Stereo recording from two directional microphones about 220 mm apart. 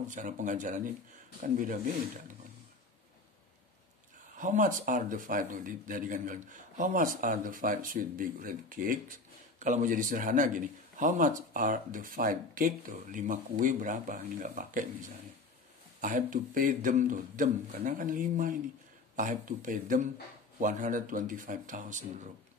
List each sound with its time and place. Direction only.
0.1 s speech: 35° right (ahead or behind)
4.4 s speech: 35° right (ahead or behind)